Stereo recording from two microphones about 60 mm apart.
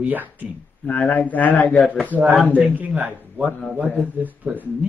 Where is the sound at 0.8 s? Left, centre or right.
Left.